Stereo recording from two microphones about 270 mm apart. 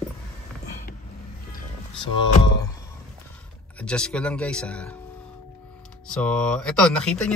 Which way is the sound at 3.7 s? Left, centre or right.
Centre.